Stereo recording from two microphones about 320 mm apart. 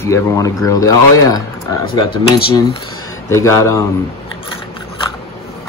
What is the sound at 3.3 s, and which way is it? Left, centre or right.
Speech, centre.